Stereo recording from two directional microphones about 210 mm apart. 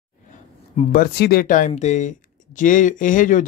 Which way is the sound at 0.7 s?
45° left (ahead or behind).